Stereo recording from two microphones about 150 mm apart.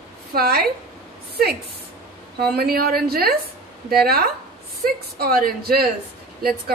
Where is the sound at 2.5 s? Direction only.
90° right.